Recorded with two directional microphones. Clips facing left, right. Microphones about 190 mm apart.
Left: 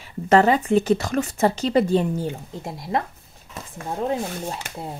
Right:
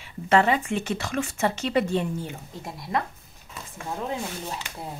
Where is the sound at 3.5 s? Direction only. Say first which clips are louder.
Left 3 dB; 35° left (ahead or behind).